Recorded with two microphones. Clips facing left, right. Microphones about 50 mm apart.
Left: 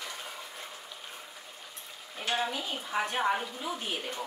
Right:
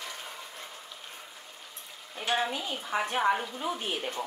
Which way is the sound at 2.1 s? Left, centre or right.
Centre.